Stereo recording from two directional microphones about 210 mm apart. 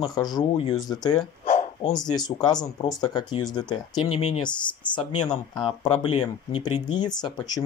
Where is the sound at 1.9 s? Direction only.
20° left (ahead or behind).